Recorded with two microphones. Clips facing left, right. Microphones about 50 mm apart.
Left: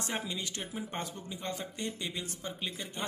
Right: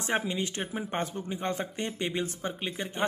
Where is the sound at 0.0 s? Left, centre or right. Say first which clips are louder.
Right 7 dB; right.